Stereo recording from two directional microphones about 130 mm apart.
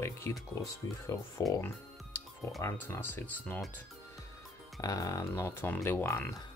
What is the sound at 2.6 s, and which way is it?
Speech, 20° left (ahead or behind).